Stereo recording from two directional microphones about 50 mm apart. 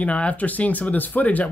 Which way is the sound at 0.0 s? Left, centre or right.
Left.